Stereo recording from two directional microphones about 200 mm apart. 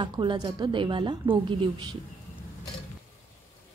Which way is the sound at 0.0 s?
25° right (ahead or behind).